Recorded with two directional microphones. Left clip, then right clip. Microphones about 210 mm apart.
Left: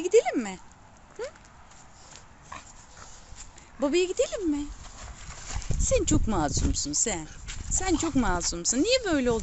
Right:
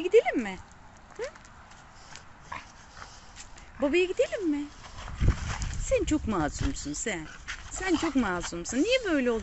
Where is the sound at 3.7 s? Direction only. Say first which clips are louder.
Even; 15° left (ahead or behind).